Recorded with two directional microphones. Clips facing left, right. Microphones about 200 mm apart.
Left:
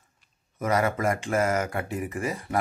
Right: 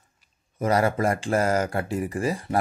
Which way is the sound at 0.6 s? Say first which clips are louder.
Right 3 dB; 30° right (ahead or behind).